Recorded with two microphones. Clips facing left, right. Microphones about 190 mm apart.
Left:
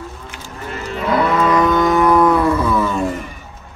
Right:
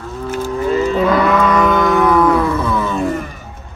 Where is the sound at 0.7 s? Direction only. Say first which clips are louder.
Right 10 dB; 60° right (ahead or behind).